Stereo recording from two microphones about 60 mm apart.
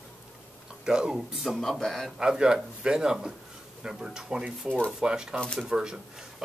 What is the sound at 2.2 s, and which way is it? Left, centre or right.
Speech, centre.